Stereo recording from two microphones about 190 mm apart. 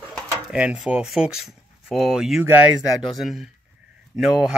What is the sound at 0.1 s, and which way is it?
Speech, 5° right (ahead or behind).